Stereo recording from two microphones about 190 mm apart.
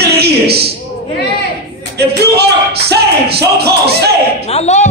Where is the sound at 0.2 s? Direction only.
55° right (ahead or behind).